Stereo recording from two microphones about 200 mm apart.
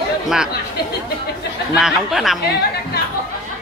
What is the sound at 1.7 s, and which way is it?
Speech, centre (ahead or behind).